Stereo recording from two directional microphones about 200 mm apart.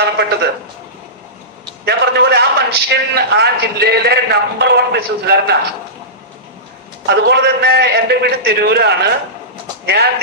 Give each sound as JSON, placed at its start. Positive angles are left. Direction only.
{"t": 0.0, "sound": "a sound", "side_deg": -55}
{"t": 1.9, "sound": "a man's voice", "side_deg": -55}
{"t": 7.1, "sound": "a man's voice", "side_deg": -55}